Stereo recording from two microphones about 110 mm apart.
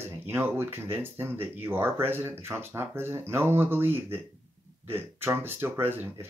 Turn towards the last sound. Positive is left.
turn(degrees=-20)  # may be behind; listen again after turning